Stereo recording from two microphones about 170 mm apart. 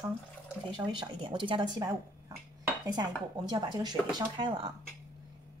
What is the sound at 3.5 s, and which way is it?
Speech, 25° right (ahead or behind).